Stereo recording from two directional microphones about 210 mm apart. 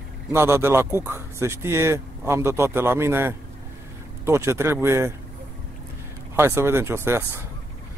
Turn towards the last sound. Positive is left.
turn(degrees=-10)  # may be behind; listen again after turning